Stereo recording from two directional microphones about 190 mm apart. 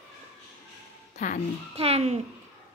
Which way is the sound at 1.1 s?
40° left (ahead or behind).